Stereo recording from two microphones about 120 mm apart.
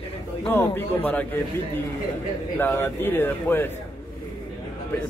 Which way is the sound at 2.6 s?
20° left (ahead or behind).